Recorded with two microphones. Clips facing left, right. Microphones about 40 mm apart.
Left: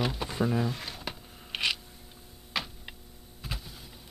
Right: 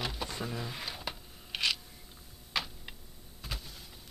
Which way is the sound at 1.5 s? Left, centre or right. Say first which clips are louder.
Left 2 dB; centre.